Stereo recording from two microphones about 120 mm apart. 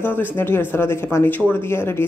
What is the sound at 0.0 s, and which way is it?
Speech, 15° left (ahead or behind).